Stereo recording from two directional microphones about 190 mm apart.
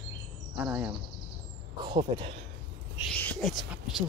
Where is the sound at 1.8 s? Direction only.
25° right (ahead or behind).